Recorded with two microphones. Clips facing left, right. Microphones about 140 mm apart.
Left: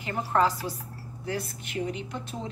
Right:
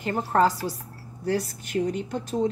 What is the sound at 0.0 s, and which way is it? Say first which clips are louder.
A woman's voice: right 3 dB; 40° right (ahead or behind).